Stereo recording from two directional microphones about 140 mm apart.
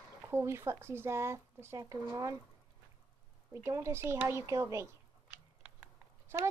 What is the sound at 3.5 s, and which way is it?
Speech, 20° right (ahead or behind).